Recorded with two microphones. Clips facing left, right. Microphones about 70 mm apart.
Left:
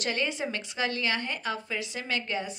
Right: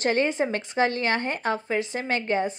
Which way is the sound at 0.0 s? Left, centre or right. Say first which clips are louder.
Right 7 dB; right.